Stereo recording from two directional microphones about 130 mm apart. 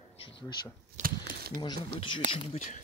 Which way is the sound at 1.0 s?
70° right (ahead or behind).